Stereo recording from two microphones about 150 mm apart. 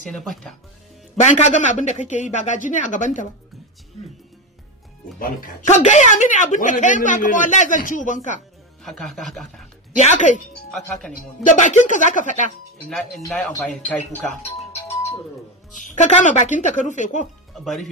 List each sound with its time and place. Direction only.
0.1 s music: centre (ahead or behind)
1.2 s speech: 50° left (ahead or behind)
5.2 s speech: 65° left (ahead or behind)
5.8 s speech: 50° left (ahead or behind)
8.8 s music: centre (ahead or behind)
9.9 s speech: 50° left (ahead or behind)
10.7 s music: centre (ahead or behind)
11.4 s speech: 55° left (ahead or behind)
14.2 s music: 5° left (ahead or behind)
14.7 s music: 45° left (ahead or behind)
15.9 s speech: 55° left (ahead or behind)